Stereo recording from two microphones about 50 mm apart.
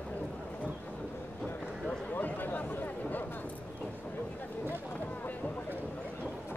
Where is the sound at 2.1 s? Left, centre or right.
Left.